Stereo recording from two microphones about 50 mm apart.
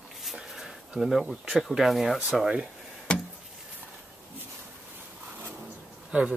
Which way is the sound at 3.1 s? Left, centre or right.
Centre.